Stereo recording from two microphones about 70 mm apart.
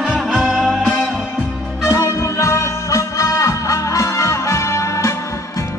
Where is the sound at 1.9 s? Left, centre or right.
Left.